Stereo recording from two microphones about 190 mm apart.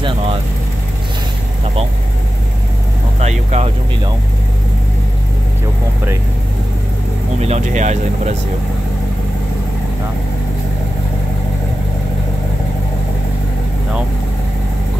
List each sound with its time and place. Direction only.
3.2 s vehicle: 35° right (ahead or behind)
7.3 s speech: 35° right (ahead or behind)